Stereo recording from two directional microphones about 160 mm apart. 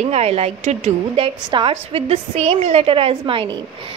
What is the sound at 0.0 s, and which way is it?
A woman's voice, 40° right (ahead or behind).